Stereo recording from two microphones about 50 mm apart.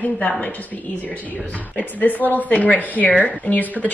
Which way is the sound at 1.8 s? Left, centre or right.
Left.